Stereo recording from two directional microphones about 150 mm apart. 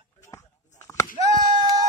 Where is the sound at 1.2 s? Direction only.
20° right (ahead or behind).